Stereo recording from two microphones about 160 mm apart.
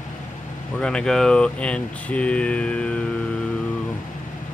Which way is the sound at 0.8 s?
5° left (ahead or behind).